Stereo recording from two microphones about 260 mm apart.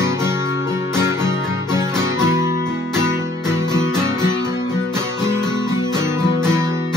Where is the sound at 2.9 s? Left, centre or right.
Centre.